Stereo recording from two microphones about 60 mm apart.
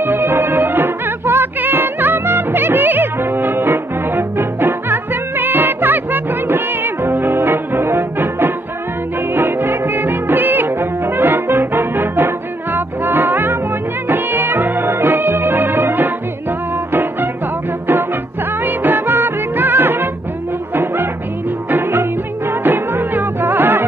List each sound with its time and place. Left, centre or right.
0.0 s music: right
18.6 s music: right